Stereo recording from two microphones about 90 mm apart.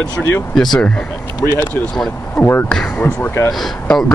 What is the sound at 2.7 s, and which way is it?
Speech, 10° left (ahead or behind).